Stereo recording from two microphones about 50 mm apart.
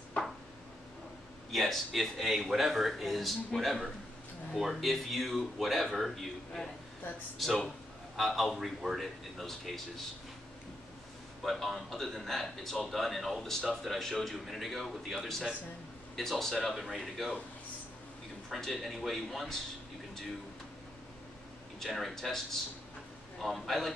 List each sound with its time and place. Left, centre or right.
0.2 s a sound: left
1.5 s speech: centre
11.4 s speech: centre
18.5 s speech: centre
21.7 s speech: centre